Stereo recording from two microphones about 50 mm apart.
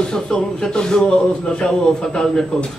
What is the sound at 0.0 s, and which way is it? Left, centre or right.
Speech, centre.